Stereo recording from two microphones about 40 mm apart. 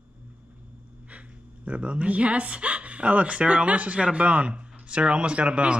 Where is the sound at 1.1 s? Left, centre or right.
Right.